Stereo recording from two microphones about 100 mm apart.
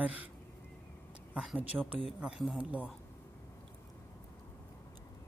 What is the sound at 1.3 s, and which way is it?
Speech, 10° right (ahead or behind).